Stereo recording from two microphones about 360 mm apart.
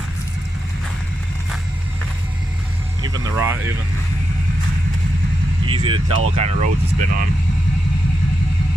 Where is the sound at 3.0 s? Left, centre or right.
Centre.